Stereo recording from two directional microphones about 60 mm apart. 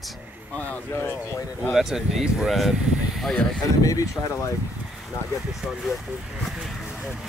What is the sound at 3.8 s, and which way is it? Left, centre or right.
Speech, left.